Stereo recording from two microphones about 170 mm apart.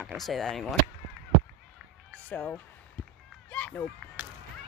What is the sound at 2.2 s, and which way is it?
Speech, 10° left (ahead or behind).